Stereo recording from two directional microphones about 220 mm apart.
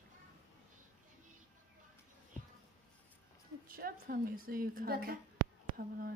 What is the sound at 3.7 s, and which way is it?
A woman's voice, 40° right (ahead or behind).